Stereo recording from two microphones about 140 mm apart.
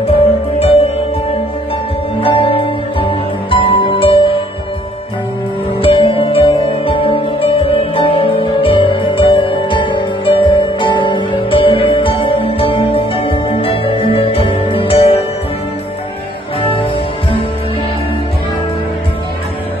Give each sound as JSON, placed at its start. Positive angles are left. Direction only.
{"t": 0.6, "sound": "music", "side_deg": 45}
{"t": 2.1, "sound": "music", "side_deg": 40}
{"t": 5.8, "sound": "music", "side_deg": 40}